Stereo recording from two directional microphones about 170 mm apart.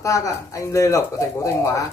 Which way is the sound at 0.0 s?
20° left (ahead or behind).